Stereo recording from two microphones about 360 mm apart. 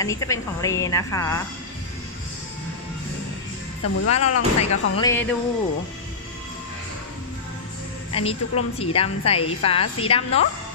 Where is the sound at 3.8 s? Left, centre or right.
Left.